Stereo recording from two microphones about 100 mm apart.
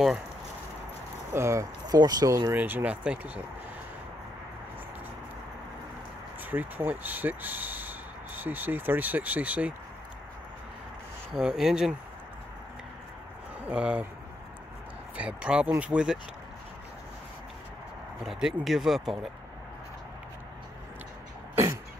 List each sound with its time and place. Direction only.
1.3 s speech: 30° right (ahead or behind)
2.5 s speech: 20° right (ahead or behind)
6.4 s speech: 20° right (ahead or behind)
11.3 s speech: 5° right (ahead or behind)
13.7 s speech: 15° right (ahead or behind)
15.1 s speech: 10° right (ahead or behind)
18.2 s speech: 5° right (ahead or behind)